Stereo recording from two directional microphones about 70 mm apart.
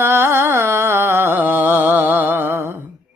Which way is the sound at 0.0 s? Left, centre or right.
Right.